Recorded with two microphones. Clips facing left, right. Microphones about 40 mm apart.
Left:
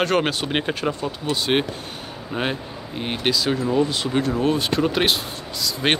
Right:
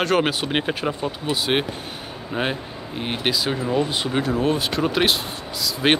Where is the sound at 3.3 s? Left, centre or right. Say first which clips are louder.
Left 3 dB; centre.